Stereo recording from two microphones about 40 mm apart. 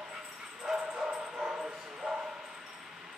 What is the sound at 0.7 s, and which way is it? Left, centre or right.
Dog, right.